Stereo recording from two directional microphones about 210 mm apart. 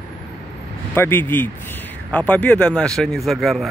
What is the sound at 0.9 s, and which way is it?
Speech, 10° left (ahead or behind).